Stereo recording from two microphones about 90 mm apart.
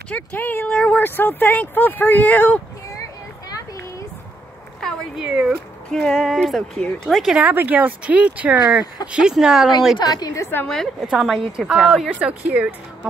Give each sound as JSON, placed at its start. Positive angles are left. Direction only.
{"t": 0.1, "sound": "speech", "side_deg": 20}
{"t": 5.1, "sound": "speech", "side_deg": -10}
{"t": 5.9, "sound": "speech", "side_deg": 10}
{"t": 7.4, "sound": "speech", "side_deg": -20}
{"t": 9.9, "sound": "a woman's voice", "side_deg": 50}
{"t": 11.0, "sound": "speech", "side_deg": -5}
{"t": 12.2, "sound": "speech", "side_deg": -15}